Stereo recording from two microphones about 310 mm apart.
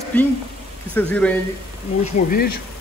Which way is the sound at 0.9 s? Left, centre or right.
Centre.